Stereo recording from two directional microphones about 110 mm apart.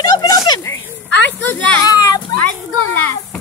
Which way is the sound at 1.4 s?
15° left (ahead or behind).